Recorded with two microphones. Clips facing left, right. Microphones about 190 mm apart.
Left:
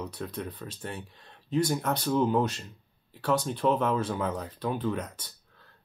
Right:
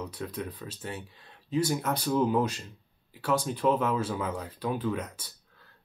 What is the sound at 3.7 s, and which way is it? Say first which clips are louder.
Speech: left 1 dB; 30° left (ahead or behind).